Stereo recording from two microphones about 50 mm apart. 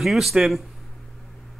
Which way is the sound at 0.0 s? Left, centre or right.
Centre.